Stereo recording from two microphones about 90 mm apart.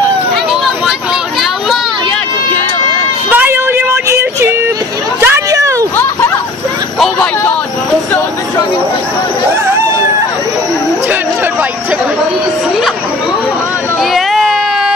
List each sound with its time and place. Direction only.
3.3 s child singing: 20° right (ahead or behind)
5.2 s a sound: 35° right (ahead or behind)
14.1 s baby cry: centre (ahead or behind)